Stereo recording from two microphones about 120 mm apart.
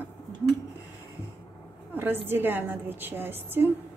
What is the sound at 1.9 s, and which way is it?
A woman's voice, 15° right (ahead or behind).